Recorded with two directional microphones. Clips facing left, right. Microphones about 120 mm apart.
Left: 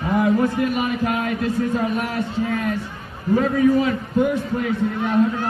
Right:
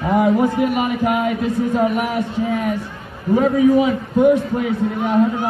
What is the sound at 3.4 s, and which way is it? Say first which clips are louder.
Speech: right 4 dB; 5° right (ahead or behind).